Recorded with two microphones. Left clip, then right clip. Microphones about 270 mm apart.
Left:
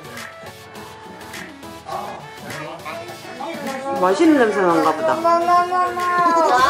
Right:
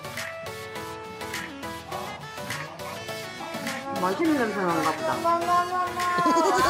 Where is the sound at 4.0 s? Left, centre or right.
Centre.